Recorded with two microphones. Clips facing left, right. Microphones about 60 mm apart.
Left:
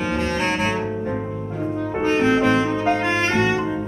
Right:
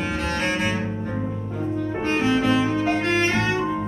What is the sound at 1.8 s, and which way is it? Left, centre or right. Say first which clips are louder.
Music: left 3 dB; centre.